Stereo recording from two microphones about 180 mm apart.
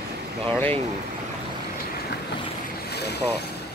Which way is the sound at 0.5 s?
10° left (ahead or behind).